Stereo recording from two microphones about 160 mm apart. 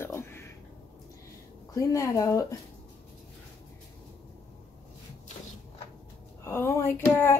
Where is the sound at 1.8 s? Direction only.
20° left (ahead or behind).